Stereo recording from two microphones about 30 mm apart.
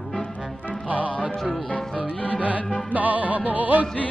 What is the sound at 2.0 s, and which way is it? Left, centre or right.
Music, left.